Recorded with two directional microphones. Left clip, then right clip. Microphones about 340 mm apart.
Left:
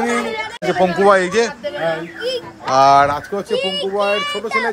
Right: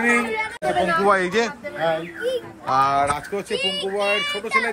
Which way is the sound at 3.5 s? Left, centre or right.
Left.